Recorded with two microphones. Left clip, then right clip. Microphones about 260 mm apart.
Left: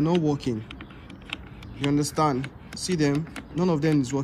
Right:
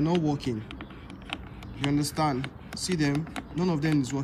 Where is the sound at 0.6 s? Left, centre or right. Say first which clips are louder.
Left 1 dB; right.